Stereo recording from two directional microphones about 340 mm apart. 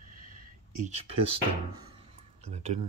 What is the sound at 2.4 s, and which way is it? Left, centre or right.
Speech, centre.